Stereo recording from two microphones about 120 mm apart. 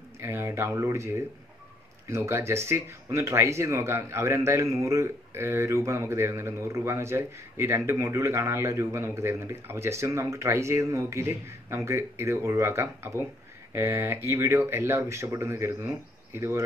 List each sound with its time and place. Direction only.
0.2 s speech: 20° right (ahead or behind)